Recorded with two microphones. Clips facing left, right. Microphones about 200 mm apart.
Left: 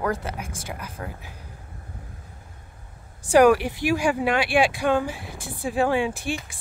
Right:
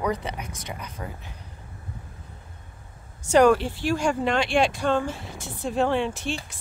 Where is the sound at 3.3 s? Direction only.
10° left (ahead or behind).